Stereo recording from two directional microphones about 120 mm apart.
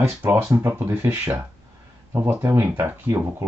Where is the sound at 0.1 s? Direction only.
15° right (ahead or behind).